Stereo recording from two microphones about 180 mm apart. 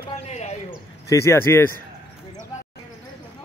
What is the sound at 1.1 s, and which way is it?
Speech, 15° left (ahead or behind).